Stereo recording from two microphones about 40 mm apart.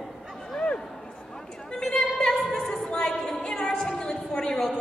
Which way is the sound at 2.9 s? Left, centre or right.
Centre.